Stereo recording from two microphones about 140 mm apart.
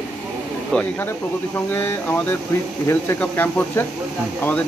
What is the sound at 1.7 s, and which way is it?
Speech, 15° left (ahead or behind).